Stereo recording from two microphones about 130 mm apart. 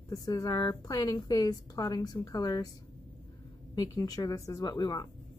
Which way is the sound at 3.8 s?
30° left (ahead or behind).